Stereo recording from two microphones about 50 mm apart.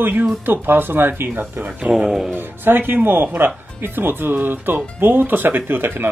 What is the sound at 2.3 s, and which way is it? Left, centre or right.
Speech, right.